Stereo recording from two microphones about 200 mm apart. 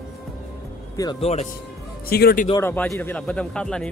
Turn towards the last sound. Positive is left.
turn(degrees=5)  # may be behind; listen again after turning